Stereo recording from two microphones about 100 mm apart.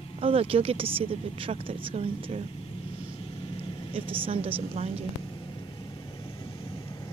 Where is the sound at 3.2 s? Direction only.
65° left (ahead or behind).